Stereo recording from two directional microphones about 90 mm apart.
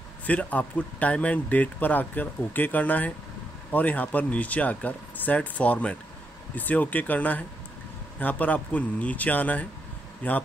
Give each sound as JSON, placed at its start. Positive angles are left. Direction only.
{"t": 0.3, "sound": "speech", "side_deg": 15}